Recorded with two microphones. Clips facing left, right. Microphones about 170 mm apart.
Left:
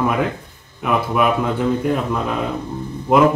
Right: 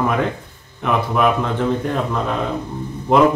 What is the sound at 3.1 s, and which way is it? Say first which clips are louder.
Speech: even; 5° left (ahead or behind).